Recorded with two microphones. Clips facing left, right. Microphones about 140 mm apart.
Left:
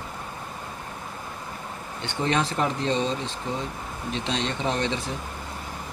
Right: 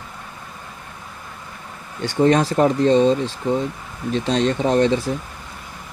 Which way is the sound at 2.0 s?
40° right (ahead or behind).